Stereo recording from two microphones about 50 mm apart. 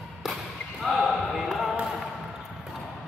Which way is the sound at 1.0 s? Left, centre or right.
Centre.